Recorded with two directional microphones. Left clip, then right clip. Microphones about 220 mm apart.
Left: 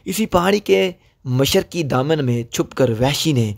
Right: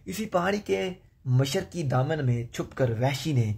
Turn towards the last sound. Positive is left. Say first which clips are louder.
# left 10 dB
turn(degrees=45)  # may be behind; listen again after turning